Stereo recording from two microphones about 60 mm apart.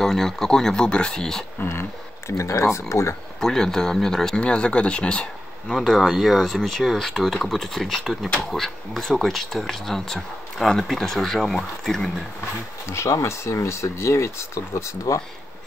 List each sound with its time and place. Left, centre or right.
0.0 s speech: centre
1.6 s speech: left
3.3 s speech: centre
5.9 s speech: centre
8.0 s speech: centre
12.8 s speech: left